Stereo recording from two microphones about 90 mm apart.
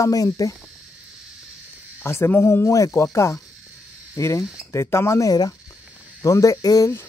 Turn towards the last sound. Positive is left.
turn(degrees=45)  # may be behind; listen again after turning